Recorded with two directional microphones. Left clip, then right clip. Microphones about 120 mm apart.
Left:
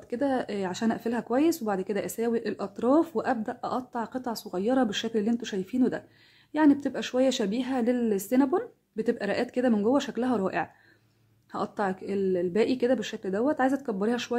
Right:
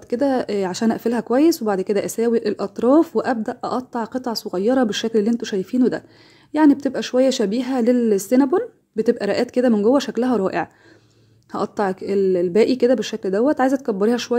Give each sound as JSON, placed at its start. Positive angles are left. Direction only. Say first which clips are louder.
{"t": 0.1, "sound": "speech", "louder": "right 9 dB", "side_deg": -40}